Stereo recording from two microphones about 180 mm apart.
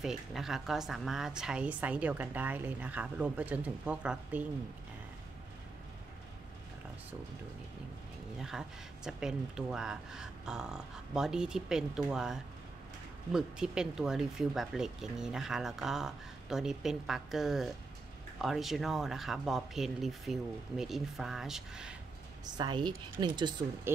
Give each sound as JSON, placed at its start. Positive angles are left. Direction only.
{"t": 0.0, "sound": "a woman's voice", "side_deg": 0}
{"t": 8.4, "sound": "speech", "side_deg": -5}
{"t": 22.6, "sound": "speech", "side_deg": -25}